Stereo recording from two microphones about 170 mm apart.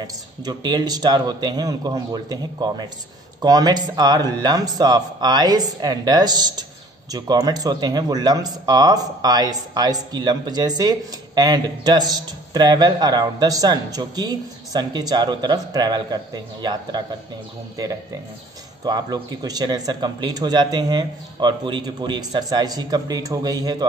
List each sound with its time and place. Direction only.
0.0 s speech: 25° right (ahead or behind)
18.9 s speech: 25° right (ahead or behind)